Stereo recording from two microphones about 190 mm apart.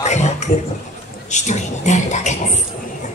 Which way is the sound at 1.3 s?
40° left (ahead or behind).